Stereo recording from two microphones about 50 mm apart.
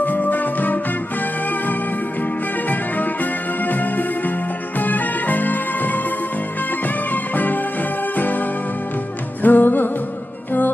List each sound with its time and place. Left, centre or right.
0.0 s music: left
2.7 s music: left
7.1 s music: left